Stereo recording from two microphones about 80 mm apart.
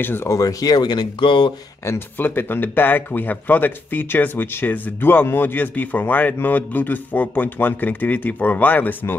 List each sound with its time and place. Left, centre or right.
0.0 s speech: left
0.3 s speech: left
1.9 s speech: left